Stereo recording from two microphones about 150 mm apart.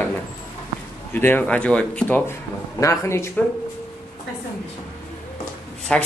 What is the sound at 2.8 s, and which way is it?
Speech, 20° left (ahead or behind).